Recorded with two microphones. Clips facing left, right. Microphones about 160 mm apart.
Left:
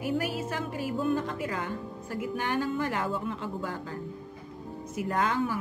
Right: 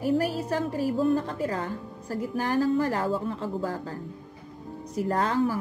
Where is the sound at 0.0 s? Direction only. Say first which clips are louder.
Right 5 dB; 35° right (ahead or behind).